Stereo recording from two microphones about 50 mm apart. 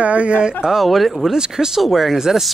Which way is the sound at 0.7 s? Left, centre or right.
Centre.